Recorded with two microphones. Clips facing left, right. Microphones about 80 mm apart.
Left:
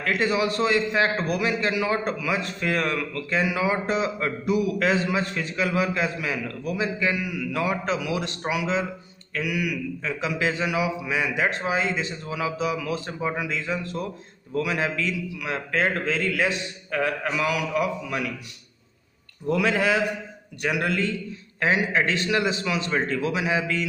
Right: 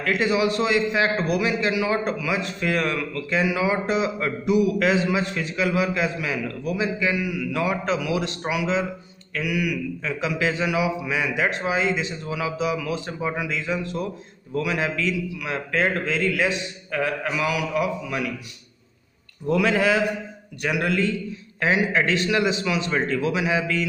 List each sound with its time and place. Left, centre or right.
0.0 s a man's voice: left
7.6 s a man's voice: left
19.5 s a man's voice: left